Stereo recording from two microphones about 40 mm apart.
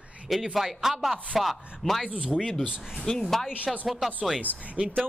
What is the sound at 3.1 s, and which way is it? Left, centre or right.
Speech, centre.